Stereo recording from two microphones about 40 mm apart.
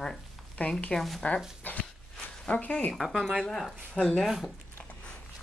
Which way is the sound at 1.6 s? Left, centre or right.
Left.